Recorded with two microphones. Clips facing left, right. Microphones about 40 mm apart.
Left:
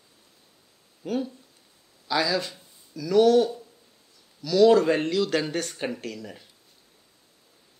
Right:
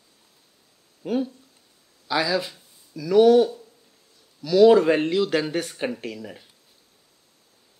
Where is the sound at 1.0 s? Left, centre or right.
Centre.